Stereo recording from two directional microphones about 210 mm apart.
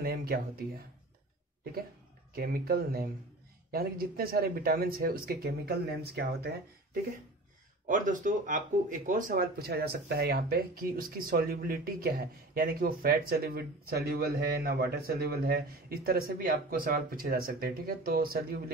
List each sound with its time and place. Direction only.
0.0 s speech: 45° right (ahead or behind)
2.3 s speech: 45° right (ahead or behind)
7.8 s speech: 40° right (ahead or behind)